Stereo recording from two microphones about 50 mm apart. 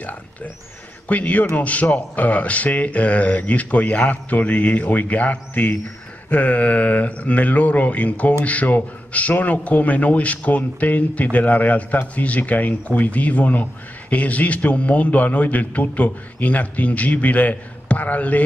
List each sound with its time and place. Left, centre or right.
1.0 s a man's voice: left